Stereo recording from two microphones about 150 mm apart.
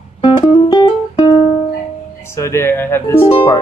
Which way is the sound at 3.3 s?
35° left (ahead or behind).